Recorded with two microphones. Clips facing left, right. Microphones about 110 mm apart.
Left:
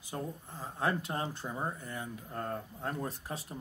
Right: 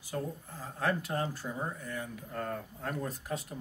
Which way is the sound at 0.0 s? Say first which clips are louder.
Right 2 dB; 25° left (ahead or behind).